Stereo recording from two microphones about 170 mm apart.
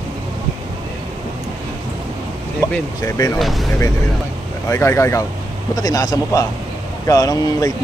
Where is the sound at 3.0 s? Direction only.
20° left (ahead or behind).